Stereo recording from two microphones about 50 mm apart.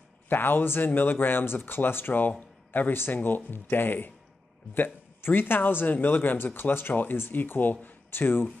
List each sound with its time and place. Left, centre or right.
0.3 s speech: left